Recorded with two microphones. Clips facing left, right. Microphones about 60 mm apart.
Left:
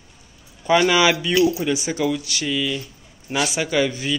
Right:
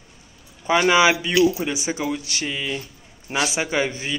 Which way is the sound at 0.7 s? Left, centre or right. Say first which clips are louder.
Even; right.